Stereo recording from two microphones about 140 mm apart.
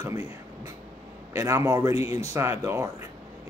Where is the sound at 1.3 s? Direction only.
20° right (ahead or behind).